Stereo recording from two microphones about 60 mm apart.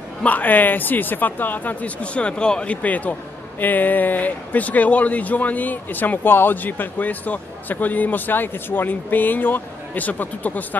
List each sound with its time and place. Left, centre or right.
0.2 s speech: left